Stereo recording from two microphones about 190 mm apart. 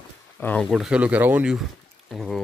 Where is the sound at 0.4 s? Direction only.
5° left (ahead or behind).